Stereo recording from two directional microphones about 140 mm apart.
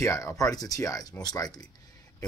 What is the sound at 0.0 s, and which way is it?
Speech, 20° left (ahead or behind).